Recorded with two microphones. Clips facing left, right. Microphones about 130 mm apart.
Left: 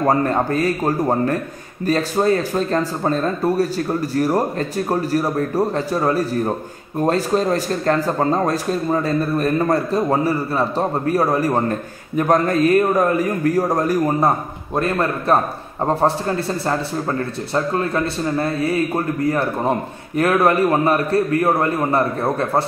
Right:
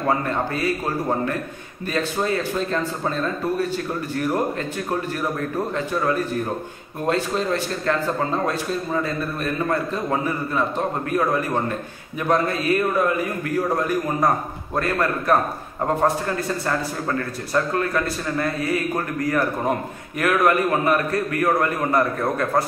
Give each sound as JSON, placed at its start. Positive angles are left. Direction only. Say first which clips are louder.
{"t": 0.0, "sound": "speech", "louder": "left 5 dB", "side_deg": 40}
{"t": 14.8, "sound": "a man's voice", "louder": "left 2 dB", "side_deg": 25}